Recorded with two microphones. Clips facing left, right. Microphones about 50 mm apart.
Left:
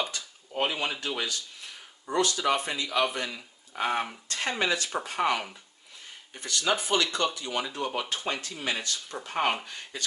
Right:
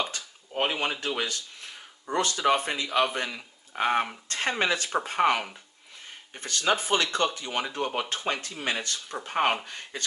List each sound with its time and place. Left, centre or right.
0.6 s speech: right